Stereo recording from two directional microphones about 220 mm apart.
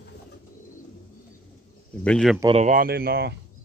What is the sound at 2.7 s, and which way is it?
Speech, 40° right (ahead or behind).